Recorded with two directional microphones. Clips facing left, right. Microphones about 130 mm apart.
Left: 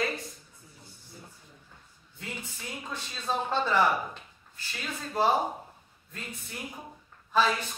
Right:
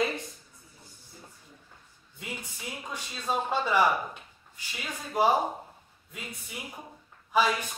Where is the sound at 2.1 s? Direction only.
15° right (ahead or behind).